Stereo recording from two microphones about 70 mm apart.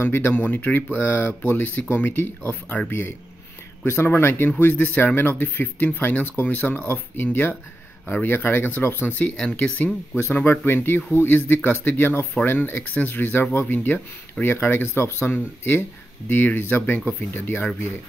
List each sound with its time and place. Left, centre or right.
0.0 s speech: left
9.3 s speech: centre
10.1 s speech: left